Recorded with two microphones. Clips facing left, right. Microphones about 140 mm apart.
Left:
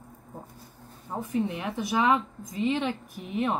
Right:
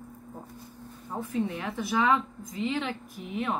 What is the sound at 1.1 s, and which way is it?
A woman's voice, 15° left (ahead or behind).